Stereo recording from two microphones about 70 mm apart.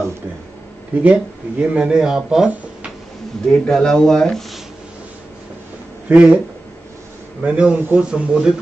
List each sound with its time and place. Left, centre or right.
1.0 s speech: centre
3.4 s speech: centre
6.0 s speech: centre
7.4 s speech: centre